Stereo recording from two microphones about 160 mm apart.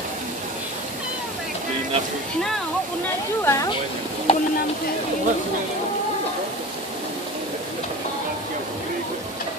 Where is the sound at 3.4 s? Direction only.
20° left (ahead or behind).